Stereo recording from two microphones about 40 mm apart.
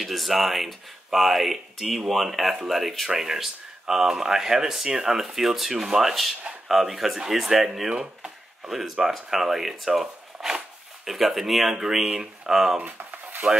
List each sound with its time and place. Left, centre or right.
0.0 s speech: centre
9.9 s zipper: centre
11.1 s speech: centre
12.0 s speech: right
12.4 s speech: centre
12.8 s a sound: right